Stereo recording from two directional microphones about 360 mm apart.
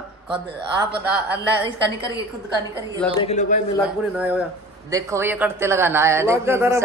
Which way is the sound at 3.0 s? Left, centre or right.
Centre.